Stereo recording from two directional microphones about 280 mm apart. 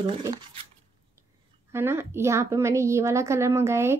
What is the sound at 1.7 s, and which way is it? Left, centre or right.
A woman's voice, centre.